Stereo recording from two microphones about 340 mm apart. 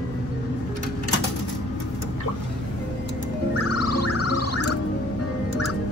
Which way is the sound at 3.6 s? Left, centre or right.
Left.